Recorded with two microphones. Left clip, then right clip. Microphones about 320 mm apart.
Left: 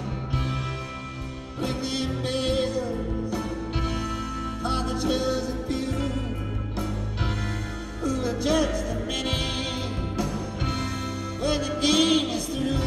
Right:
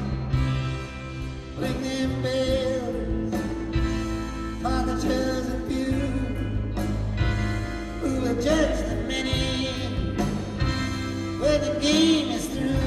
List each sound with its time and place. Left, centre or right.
1.6 s music: centre
8.1 s music: centre